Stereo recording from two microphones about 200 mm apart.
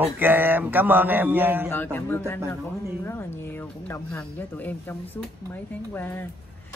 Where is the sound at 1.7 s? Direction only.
10° left (ahead or behind).